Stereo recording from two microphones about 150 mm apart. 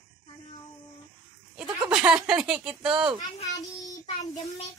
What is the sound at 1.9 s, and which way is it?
Speech, 10° right (ahead or behind).